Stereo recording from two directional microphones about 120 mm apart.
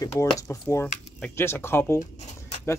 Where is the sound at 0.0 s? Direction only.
25° left (ahead or behind).